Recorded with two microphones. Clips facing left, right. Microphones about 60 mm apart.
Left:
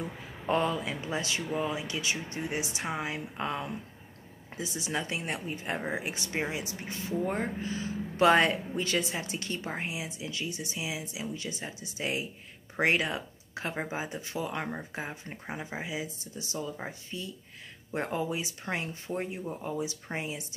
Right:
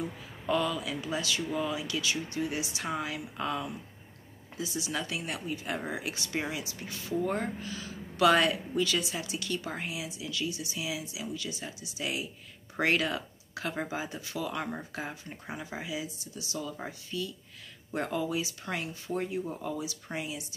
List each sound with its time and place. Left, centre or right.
0.5 s speech: left